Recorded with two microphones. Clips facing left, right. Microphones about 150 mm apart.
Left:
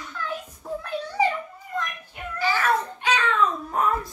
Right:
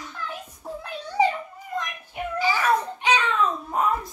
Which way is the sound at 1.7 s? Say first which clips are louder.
Even; 15° right (ahead or behind).